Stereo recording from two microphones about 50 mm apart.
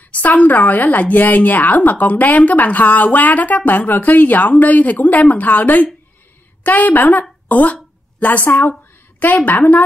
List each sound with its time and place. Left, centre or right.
0.1 s a woman's voice: left